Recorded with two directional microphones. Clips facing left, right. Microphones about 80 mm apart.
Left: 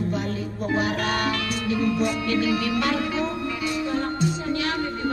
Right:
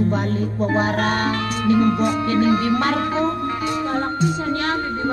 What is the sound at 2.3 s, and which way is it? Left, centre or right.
Music, right.